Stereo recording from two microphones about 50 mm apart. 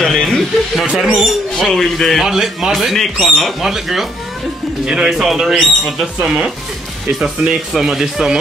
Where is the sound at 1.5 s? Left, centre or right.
Centre.